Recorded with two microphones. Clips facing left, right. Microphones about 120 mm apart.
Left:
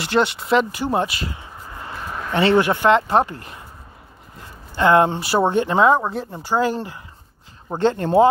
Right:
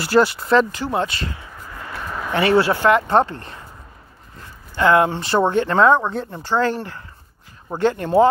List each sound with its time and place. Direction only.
0.0 s speech: centre (ahead or behind)
0.7 s speech: 20° left (ahead or behind)
1.3 s a sound: 25° left (ahead or behind)
2.3 s speech: 20° left (ahead or behind)
4.7 s speech: 25° left (ahead or behind)
5.2 s speech: 10° left (ahead or behind)
5.9 s speech: 5° left (ahead or behind)
7.7 s speech: 30° left (ahead or behind)